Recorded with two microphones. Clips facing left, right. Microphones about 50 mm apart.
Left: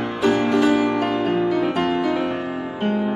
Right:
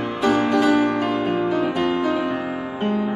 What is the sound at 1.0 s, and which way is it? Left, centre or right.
Music, left.